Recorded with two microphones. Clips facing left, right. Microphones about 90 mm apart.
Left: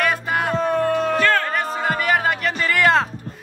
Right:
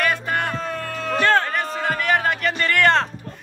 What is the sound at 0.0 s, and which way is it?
Music, 5° left (ahead or behind).